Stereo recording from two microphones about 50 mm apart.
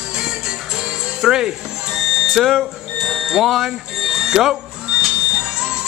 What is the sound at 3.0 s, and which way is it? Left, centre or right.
Music, centre.